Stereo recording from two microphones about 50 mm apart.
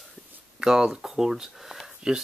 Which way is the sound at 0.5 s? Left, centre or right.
Centre.